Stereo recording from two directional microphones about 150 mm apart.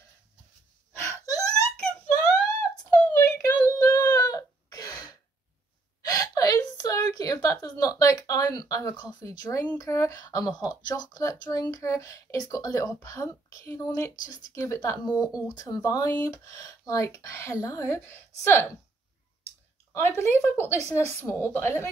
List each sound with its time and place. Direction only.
1.0 s wail: 25° left (ahead or behind)
1.9 s wail: 5° left (ahead or behind)
2.9 s a sound: 15° left (ahead or behind)
4.0 s a sound: 25° left (ahead or behind)
6.0 s hiccup: 25° left (ahead or behind)
7.5 s speech: 25° left (ahead or behind)
19.9 s a woman's voice: 15° left (ahead or behind)